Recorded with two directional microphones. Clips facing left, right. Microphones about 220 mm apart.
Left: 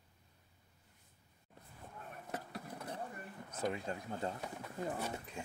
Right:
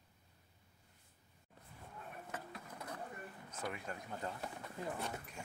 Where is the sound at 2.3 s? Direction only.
35° left (ahead or behind).